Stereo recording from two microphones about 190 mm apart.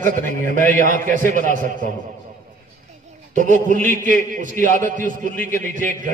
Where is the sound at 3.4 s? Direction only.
40° right (ahead or behind).